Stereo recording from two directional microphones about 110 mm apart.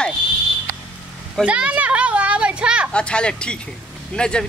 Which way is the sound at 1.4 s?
10° right (ahead or behind).